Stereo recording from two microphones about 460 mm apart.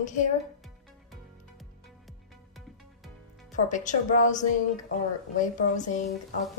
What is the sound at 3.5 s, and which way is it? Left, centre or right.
A woman's voice, centre.